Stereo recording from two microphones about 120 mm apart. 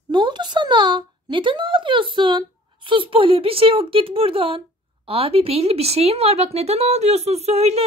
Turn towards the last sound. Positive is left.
turn(degrees=-60)  # may be behind; listen again after turning